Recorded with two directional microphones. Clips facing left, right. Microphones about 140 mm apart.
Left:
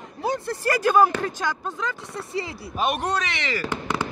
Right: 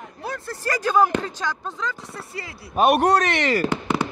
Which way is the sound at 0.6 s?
10° left (ahead or behind).